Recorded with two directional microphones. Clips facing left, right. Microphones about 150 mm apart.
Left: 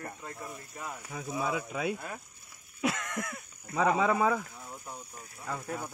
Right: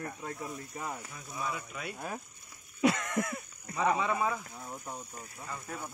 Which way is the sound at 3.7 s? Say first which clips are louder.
Left 3 dB; 90° left.